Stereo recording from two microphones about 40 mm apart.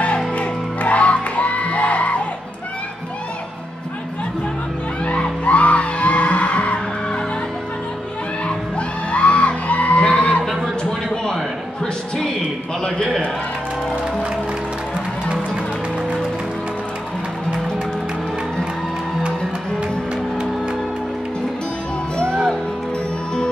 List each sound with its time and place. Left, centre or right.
0.3 s music: left
5.0 s music: left
8.5 s music: left
10.8 s a sound: left
22.3 s music: centre